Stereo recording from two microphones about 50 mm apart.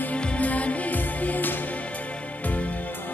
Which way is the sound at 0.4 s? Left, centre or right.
Left.